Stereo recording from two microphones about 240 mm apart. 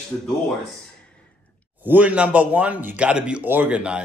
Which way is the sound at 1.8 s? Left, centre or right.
Centre.